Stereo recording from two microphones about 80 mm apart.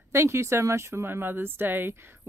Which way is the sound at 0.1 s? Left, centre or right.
Right.